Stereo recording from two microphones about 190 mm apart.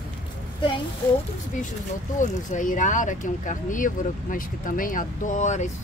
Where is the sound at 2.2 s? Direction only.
40° left (ahead or behind).